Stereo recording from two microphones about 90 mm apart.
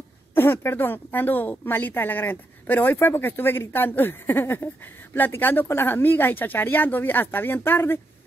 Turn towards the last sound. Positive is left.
turn(degrees=25)  # may be behind; listen again after turning